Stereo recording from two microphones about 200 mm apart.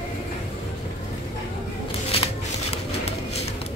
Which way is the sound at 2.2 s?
30° left (ahead or behind).